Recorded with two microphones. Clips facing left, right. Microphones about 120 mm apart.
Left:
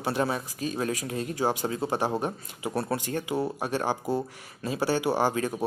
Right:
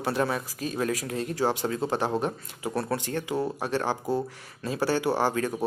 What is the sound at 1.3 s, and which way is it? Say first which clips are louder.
Speech: right 1 dB; 15° left (ahead or behind).